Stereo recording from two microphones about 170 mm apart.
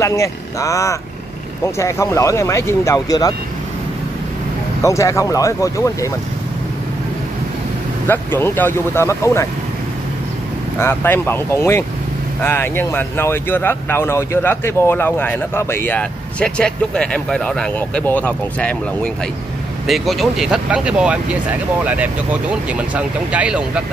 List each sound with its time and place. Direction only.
0.0 s speech: 20° left (ahead or behind)
4.8 s speech: 15° left (ahead or behind)
8.1 s speech: 10° left (ahead or behind)
10.8 s speech: 10° left (ahead or behind)
19.9 s speech: centre (ahead or behind)